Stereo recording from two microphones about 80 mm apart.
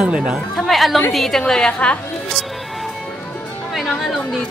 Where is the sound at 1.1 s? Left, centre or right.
Centre.